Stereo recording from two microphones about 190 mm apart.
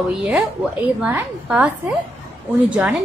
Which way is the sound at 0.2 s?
5° right (ahead or behind).